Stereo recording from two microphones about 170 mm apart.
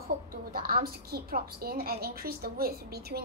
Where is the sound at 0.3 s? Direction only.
60° right (ahead or behind).